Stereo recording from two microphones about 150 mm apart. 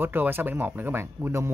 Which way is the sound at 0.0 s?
15° right (ahead or behind).